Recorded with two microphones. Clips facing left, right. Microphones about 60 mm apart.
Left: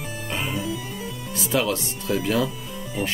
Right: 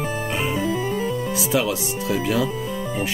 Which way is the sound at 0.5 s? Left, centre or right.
Right.